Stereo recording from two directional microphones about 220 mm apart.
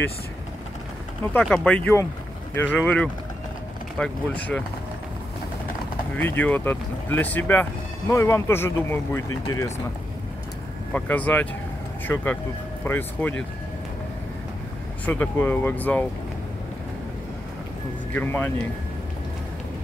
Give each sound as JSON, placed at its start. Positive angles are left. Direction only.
{"t": 1.3, "sound": "speech", "side_deg": 5}
{"t": 6.1, "sound": "speech", "side_deg": 10}
{"t": 10.9, "sound": "speech", "side_deg": 5}
{"t": 12.8, "sound": "speech", "side_deg": 10}
{"t": 15.0, "sound": "speech", "side_deg": 10}
{"t": 18.1, "sound": "speech", "side_deg": 10}